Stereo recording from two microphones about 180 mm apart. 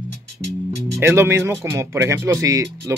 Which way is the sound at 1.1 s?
15° right (ahead or behind).